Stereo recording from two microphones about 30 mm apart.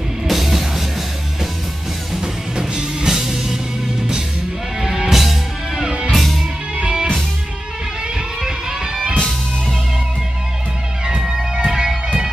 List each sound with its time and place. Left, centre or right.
0.3 s music: centre
2.5 s music: right
3.1 s music: centre
4.7 s music: centre
8.4 s music: centre
11.1 s music: centre